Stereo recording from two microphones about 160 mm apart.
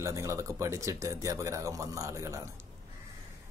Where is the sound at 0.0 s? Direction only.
20° right (ahead or behind).